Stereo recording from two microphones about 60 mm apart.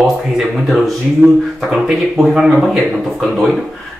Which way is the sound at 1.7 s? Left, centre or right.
Centre.